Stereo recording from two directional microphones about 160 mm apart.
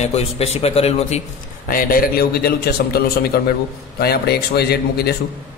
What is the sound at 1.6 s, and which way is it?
A man's voice, 60° left (ahead or behind).